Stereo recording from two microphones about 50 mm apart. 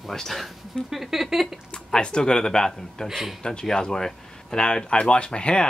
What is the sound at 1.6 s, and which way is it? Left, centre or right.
A man's voice, centre.